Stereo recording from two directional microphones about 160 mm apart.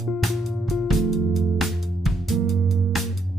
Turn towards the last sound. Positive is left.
turn(degrees=0)  # may be behind; listen again after turning